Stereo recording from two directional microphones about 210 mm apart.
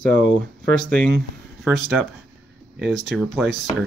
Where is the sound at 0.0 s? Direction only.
40° right (ahead or behind).